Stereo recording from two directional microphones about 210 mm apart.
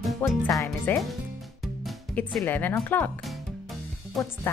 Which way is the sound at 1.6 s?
Centre (ahead or behind).